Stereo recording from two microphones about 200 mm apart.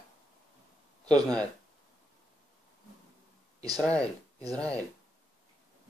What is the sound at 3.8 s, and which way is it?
Speech, 5° left (ahead or behind).